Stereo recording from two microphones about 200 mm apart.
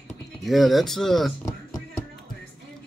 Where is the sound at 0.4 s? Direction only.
Centre (ahead or behind).